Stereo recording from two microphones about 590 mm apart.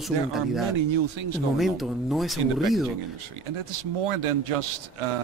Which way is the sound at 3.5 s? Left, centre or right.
Right.